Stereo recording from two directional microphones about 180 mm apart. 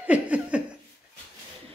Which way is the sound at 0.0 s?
5° right (ahead or behind).